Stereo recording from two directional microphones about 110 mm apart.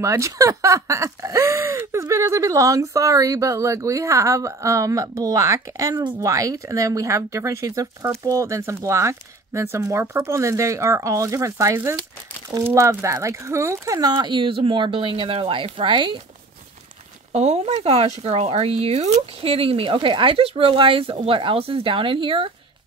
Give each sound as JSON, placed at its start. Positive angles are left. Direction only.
{"t": 0.0, "sound": "speech", "side_deg": -30}
{"t": 17.3, "sound": "speech", "side_deg": -80}